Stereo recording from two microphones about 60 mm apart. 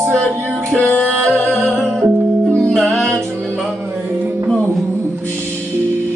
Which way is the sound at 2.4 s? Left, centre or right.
Centre.